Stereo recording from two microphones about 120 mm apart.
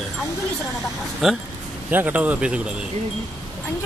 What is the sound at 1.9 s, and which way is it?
Speech, 15° right (ahead or behind).